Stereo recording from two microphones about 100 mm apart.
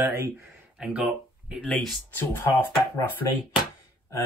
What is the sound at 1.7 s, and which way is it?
Speech, centre (ahead or behind).